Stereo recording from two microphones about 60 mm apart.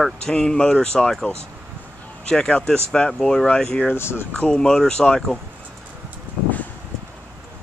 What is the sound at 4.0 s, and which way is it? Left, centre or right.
Speech, left.